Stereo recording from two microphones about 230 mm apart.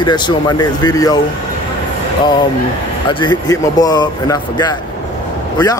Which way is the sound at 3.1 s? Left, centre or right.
Centre.